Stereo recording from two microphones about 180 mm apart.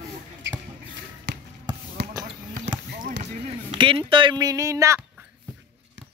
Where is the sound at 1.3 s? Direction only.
70° right (ahead or behind).